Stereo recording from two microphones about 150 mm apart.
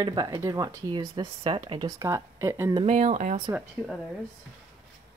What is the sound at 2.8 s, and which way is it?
Speech, 45° right (ahead or behind).